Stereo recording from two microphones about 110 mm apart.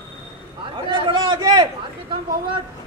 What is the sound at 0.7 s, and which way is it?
Speech, 45° right (ahead or behind).